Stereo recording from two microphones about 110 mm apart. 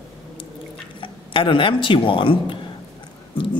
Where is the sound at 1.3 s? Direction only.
50° left (ahead or behind).